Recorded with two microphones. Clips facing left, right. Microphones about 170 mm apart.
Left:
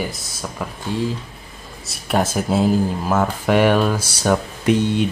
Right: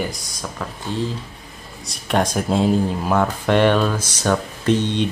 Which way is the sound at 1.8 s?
5° left (ahead or behind).